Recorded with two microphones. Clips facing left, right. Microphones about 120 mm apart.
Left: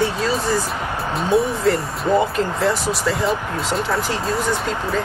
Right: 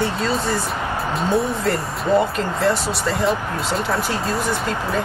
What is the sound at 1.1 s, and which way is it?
Speech, centre (ahead or behind).